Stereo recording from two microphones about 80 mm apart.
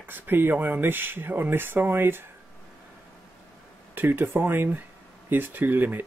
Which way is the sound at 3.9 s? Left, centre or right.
Right.